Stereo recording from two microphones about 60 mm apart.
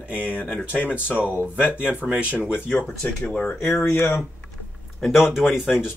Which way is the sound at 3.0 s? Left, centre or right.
Centre.